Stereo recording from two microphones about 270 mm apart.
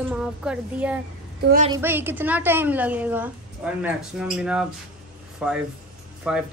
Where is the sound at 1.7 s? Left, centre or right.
Centre.